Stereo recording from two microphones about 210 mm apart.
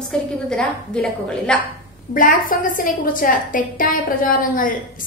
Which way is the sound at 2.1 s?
40° left (ahead or behind).